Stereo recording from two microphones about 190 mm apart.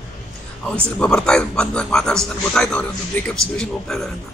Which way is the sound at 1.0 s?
5° left (ahead or behind).